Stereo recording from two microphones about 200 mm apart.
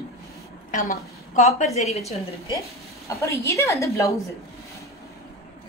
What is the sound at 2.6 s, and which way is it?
A woman's voice, 15° left (ahead or behind).